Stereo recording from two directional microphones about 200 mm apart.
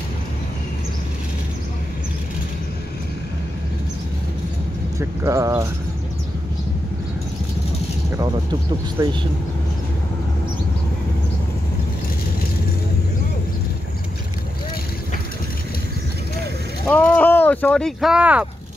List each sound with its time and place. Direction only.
4.9 s speech: 15° right (ahead or behind)
9.0 s speech: 15° right (ahead or behind)
16.8 s speech: 5° left (ahead or behind)